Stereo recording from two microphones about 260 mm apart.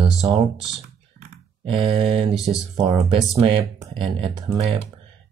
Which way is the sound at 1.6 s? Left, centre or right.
Centre.